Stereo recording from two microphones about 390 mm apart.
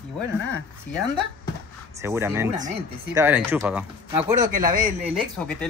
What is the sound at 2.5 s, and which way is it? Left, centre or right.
Speech, centre.